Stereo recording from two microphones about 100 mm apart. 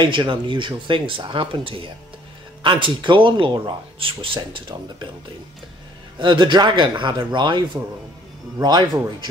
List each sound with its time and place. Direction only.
0.0 s speech: 50° right (ahead or behind)
6.1 s speech: 50° right (ahead or behind)